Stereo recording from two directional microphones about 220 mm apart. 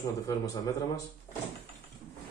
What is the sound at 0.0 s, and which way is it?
A man's voice, 15° left (ahead or behind).